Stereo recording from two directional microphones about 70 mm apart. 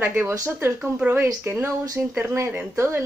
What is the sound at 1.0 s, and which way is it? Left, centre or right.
Speech, centre.